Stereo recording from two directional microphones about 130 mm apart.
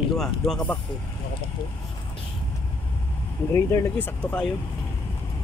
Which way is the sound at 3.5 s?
20° left (ahead or behind).